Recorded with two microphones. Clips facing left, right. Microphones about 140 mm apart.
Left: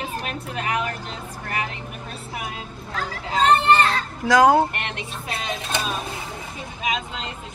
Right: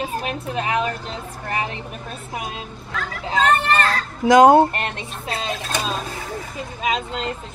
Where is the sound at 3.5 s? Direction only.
25° left (ahead or behind).